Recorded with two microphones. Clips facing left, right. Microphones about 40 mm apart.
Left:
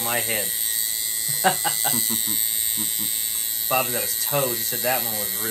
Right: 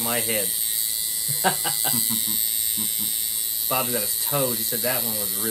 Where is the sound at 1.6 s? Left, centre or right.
Left.